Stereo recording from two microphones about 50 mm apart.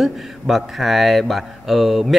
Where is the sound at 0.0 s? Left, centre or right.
Centre.